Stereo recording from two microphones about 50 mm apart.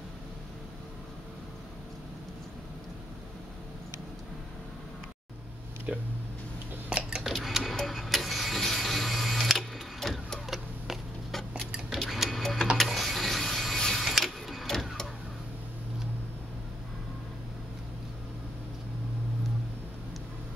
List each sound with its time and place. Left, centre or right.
5.9 s speech: right
6.9 s a sound: centre
7.2 s tick-tock: centre
7.7 s printer: centre
11.9 s clock: centre
12.7 s a sound: centre
13.8 s printer: centre